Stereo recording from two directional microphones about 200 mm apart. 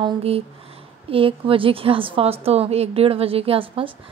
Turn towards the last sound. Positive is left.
turn(degrees=-25)  # may be behind; listen again after turning